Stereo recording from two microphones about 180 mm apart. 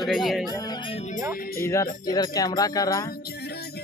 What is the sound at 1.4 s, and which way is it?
Music, 55° left (ahead or behind).